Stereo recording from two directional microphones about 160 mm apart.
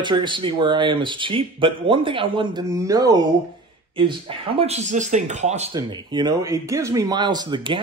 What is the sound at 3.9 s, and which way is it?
Speech, 35° right (ahead or behind).